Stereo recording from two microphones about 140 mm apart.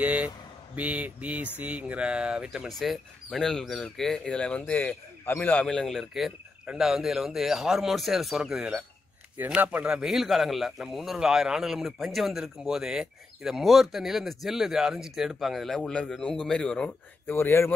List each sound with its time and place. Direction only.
0.0 s speech: 10° right (ahead or behind)
17.4 s speech: 15° left (ahead or behind)